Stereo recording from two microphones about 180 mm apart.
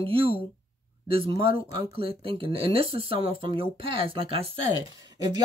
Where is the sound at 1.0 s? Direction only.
30° right (ahead or behind).